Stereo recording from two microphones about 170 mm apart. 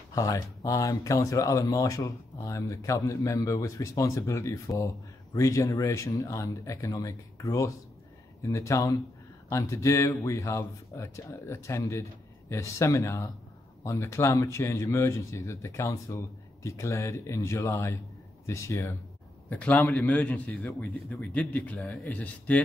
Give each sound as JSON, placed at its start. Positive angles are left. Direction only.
{"t": 0.1, "sound": "speech", "side_deg": 20}